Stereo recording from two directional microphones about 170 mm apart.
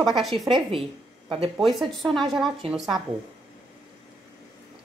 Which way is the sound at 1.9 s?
Centre (ahead or behind).